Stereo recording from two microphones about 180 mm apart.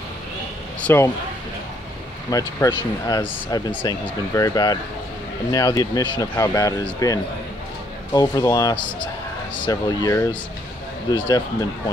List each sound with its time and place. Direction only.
0.7 s speech: 10° left (ahead or behind)
2.3 s speech: 20° left (ahead or behind)